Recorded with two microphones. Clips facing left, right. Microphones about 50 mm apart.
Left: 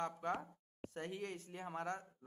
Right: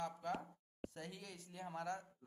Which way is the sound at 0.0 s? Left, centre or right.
Left.